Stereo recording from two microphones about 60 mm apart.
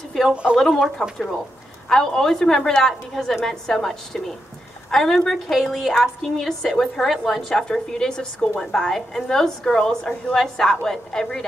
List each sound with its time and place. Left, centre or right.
0.3 s speech: centre
0.6 s a woman's voice: centre
5.2 s a woman's voice: centre